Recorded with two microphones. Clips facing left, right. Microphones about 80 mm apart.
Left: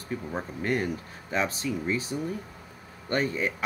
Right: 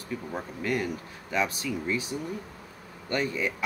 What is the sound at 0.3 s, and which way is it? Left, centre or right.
Speech, left.